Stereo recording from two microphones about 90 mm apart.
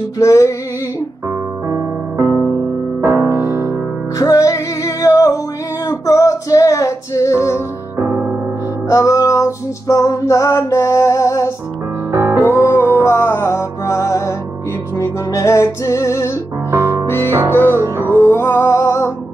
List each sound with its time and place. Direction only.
0.2 s music: 35° left (ahead or behind)
2.1 s music: 20° right (ahead or behind)
3.0 s music: 30° right (ahead or behind)
4.2 s music: 40° left (ahead or behind)
8.0 s music: 20° right (ahead or behind)
8.8 s music: 35° left (ahead or behind)
12.1 s music: 25° right (ahead or behind)
12.4 s music: 25° left (ahead or behind)
16.7 s music: 25° right (ahead or behind)
18.0 s music: 25° left (ahead or behind)